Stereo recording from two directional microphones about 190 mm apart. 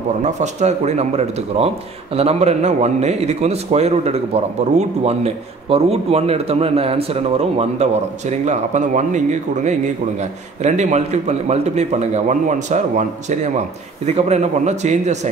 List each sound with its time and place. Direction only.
0.2 s a man's voice: 35° right (ahead or behind)